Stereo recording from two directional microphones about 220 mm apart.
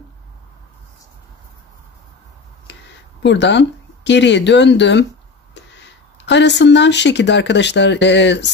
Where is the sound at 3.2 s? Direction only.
55° left (ahead or behind).